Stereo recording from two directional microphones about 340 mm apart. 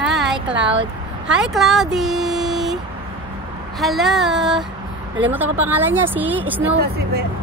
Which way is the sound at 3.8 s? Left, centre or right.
Centre.